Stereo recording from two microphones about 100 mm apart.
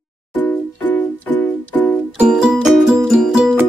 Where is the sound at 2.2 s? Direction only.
5° right (ahead or behind).